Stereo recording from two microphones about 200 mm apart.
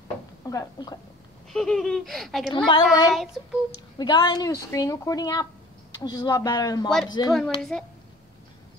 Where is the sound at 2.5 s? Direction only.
20° left (ahead or behind).